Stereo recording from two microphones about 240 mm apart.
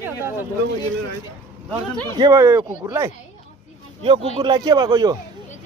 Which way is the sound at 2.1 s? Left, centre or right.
Centre.